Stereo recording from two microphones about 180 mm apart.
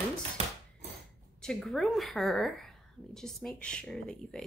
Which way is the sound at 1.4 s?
5° left (ahead or behind).